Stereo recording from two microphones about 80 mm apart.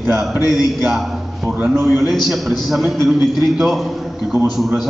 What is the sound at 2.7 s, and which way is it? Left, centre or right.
A man's voice, centre.